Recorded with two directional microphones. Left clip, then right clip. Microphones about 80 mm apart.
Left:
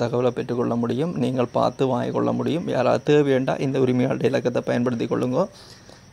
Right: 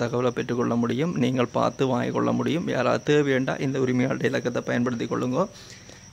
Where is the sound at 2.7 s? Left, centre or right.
Centre.